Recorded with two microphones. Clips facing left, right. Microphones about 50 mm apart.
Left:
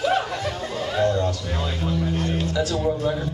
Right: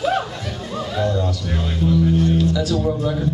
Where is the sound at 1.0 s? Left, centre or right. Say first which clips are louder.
Left 1 dB; centre.